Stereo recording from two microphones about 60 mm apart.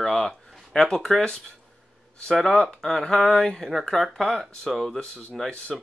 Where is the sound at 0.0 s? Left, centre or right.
Centre.